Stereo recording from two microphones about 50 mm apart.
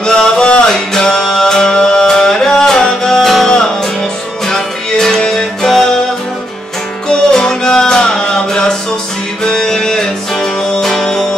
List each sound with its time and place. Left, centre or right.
0.0 s music: centre
7.1 s music: centre